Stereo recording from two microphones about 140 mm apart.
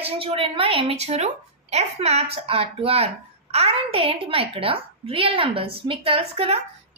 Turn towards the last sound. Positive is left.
turn(degrees=-45)  # may be behind; listen again after turning